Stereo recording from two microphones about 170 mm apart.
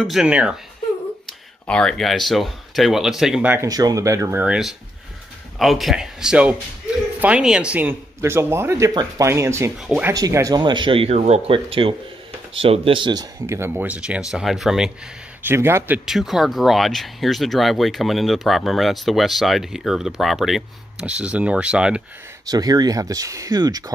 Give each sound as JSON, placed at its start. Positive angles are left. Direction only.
{"t": 0.0, "sound": "speech", "side_deg": -5}
{"t": 1.7, "sound": "speech", "side_deg": 5}
{"t": 3.5, "sound": "speech", "side_deg": -20}
{"t": 9.8, "sound": "speech", "side_deg": -5}
{"t": 10.1, "sound": "speech", "side_deg": -20}
{"t": 15.4, "sound": "speech", "side_deg": -15}
{"t": 16.1, "sound": "speech", "side_deg": 0}
{"t": 22.5, "sound": "speech", "side_deg": -20}